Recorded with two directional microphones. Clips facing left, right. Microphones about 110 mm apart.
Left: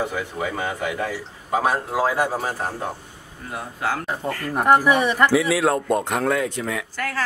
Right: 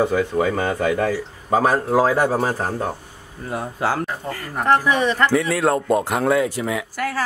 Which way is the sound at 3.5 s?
35° right (ahead or behind).